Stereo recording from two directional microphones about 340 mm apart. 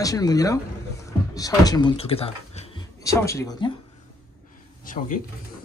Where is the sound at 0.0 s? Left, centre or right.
Centre.